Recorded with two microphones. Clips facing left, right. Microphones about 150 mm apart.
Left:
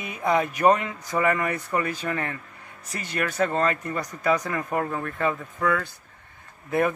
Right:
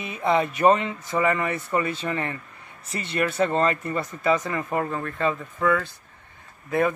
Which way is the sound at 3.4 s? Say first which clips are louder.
Right 1 dB; 5° right (ahead or behind).